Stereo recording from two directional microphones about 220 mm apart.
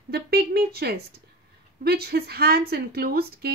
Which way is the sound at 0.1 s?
45° right (ahead or behind).